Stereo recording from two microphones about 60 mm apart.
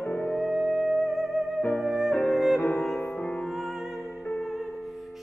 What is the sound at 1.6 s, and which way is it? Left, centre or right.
Music, left.